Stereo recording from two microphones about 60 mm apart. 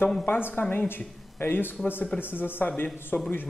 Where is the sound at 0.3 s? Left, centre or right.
Left.